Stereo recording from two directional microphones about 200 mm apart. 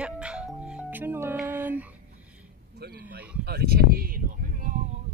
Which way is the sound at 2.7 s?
55° right (ahead or behind).